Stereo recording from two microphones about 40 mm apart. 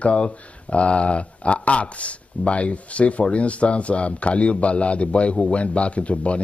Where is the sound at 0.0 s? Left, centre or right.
Left.